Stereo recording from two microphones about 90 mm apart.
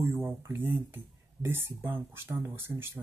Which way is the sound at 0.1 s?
25° right (ahead or behind).